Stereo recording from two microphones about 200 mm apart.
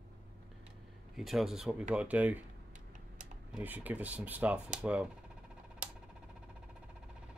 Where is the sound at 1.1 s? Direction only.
Centre (ahead or behind).